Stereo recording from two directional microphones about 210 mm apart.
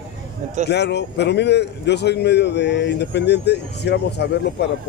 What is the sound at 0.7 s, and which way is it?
A man's voice, 55° left (ahead or behind).